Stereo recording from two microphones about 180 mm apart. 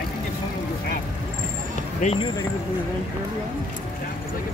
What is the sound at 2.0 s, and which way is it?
Speech, 40° left (ahead or behind).